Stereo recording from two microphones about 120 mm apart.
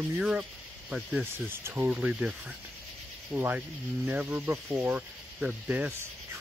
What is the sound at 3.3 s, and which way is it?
Speech, 10° right (ahead or behind).